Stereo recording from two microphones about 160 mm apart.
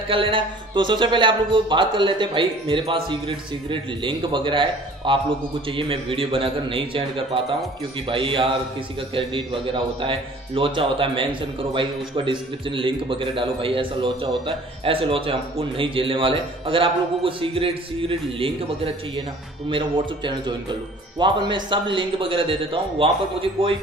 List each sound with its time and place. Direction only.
0.1 s a man's voice: 30° right (ahead or behind)
19.7 s a man's voice: 30° right (ahead or behind)